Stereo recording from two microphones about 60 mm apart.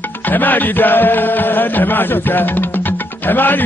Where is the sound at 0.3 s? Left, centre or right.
Left.